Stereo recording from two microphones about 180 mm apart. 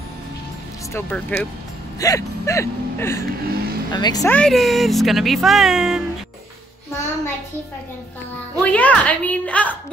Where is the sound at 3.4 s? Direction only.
55° right (ahead or behind).